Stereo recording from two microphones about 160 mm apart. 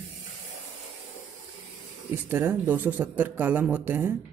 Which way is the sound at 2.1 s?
15° right (ahead or behind).